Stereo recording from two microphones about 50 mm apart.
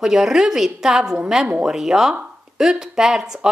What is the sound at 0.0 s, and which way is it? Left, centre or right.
A woman's voice, centre.